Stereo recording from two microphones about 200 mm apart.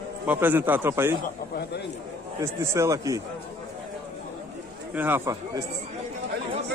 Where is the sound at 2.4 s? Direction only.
15° right (ahead or behind).